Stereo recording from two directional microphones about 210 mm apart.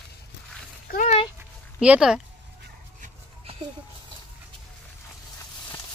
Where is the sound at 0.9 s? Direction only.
40° left (ahead or behind).